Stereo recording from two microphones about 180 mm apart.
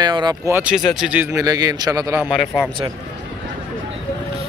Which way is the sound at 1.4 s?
20° right (ahead or behind).